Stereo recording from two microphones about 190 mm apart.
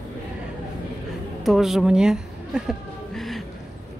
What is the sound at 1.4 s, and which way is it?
A woman's voice, centre (ahead or behind).